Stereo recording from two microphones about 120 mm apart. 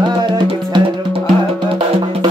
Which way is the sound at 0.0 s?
40° right (ahead or behind).